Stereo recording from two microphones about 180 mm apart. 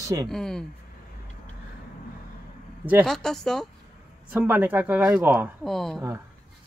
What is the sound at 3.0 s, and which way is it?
Speech, centre (ahead or behind).